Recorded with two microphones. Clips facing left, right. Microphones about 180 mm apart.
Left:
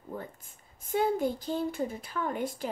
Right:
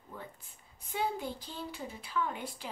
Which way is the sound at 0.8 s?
50° left (ahead or behind).